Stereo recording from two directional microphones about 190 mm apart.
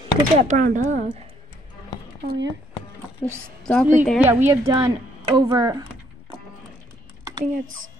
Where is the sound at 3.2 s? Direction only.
10° left (ahead or behind).